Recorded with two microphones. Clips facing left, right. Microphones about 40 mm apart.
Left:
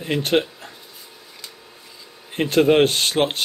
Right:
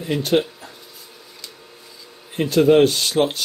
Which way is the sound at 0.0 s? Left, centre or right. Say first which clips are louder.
Right 1 dB; left.